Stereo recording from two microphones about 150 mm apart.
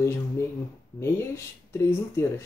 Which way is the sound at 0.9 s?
15° left (ahead or behind).